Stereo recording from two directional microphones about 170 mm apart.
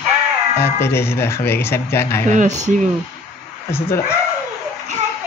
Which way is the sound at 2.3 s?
45° right (ahead or behind).